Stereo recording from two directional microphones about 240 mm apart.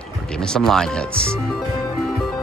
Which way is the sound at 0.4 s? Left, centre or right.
Centre.